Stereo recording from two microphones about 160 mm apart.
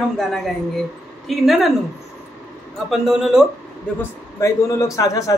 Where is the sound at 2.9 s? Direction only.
5° right (ahead or behind).